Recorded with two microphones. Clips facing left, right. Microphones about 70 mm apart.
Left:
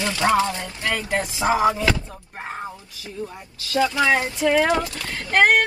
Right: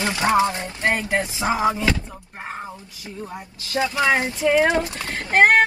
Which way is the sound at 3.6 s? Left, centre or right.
Right.